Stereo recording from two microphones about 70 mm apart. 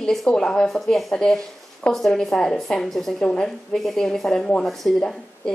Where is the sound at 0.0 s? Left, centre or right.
Centre.